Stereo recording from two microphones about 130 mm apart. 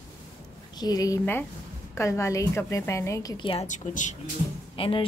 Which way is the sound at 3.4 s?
45° left (ahead or behind).